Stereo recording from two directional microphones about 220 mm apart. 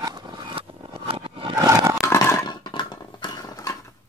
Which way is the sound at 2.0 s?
10° left (ahead or behind).